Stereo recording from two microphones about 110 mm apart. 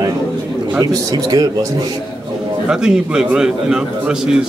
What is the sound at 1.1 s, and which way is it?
Speech, 35° right (ahead or behind).